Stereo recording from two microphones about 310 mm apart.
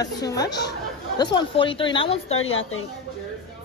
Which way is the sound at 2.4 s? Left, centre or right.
Left.